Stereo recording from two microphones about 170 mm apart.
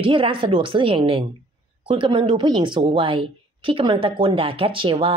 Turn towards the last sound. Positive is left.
turn(degrees=-30)  # may be behind; listen again after turning